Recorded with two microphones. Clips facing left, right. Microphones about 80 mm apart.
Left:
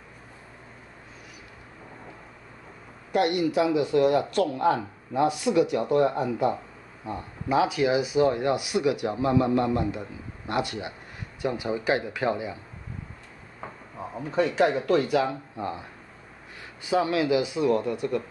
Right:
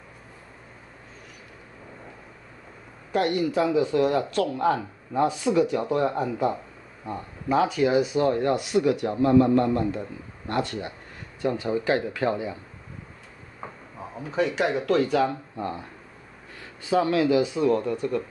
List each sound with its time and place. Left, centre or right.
3.1 s speech: centre
13.9 s speech: centre
16.8 s speech: centre